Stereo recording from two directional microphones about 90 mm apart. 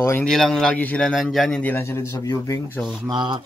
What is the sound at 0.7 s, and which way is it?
Speech, 20° left (ahead or behind).